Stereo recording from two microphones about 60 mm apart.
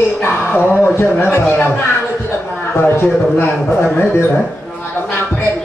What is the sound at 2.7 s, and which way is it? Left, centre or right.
Speech, left.